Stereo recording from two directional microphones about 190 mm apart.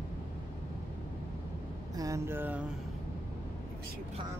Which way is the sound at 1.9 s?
20° right (ahead or behind).